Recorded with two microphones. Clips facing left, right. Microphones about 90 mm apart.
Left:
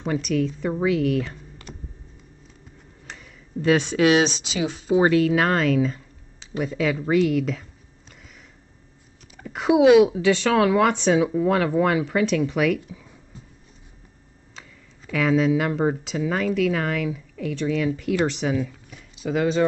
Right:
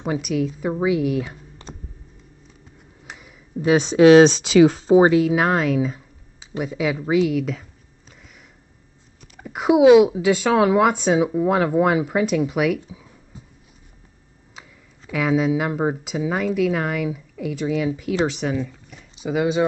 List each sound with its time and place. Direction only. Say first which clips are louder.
0.0 s speech: right 1 dB; 10° right (ahead or behind)
1.6 s a sound: right 3 dB; 25° right (ahead or behind)
3.1 s a sound: right 1 dB; 10° right (ahead or behind)
4.1 s speech: right 9 dB; 40° right (ahead or behind)
4.9 s speech: right 1 dB; 15° right (ahead or behind)
9.2 s speech: right 1 dB; 10° right (ahead or behind)
14.5 s speech: right 1 dB; 10° right (ahead or behind)